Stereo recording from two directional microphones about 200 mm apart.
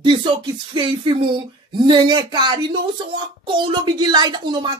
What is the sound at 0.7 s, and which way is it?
Speech, 25° right (ahead or behind).